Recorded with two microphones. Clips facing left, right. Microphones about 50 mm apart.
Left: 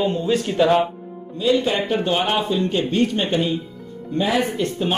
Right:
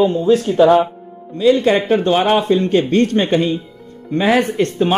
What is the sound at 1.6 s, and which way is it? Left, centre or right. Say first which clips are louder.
A man's voice: right 7 dB; right.